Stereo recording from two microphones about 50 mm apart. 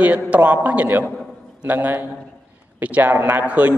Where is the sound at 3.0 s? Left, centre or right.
Right.